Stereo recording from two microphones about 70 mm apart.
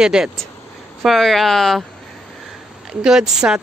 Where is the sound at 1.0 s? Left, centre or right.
Centre.